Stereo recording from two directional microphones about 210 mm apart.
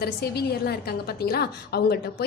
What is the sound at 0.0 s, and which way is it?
A woman's voice, 50° left (ahead or behind).